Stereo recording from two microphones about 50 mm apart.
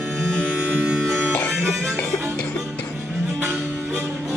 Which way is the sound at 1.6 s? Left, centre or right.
Centre.